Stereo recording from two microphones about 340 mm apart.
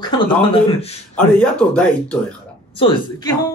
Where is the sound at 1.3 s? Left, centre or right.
Centre.